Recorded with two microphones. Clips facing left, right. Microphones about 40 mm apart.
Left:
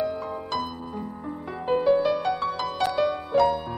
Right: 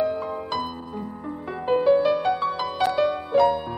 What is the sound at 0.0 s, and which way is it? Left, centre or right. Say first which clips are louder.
Music: right 3 dB; centre.